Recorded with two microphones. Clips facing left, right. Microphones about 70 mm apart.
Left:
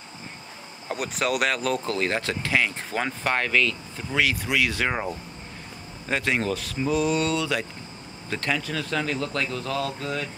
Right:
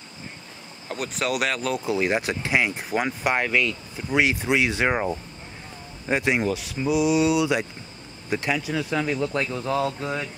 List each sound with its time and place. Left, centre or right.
0.8 s speech: centre
2.0 s speech: centre